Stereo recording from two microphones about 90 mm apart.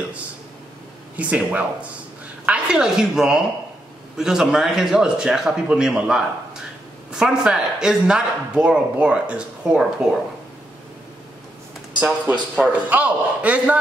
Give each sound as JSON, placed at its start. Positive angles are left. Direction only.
{"t": 1.1, "sound": "speech", "side_deg": -15}
{"t": 12.0, "sound": "speech", "side_deg": -15}